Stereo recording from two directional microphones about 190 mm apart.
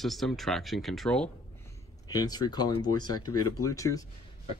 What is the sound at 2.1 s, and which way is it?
Speech, 20° left (ahead or behind).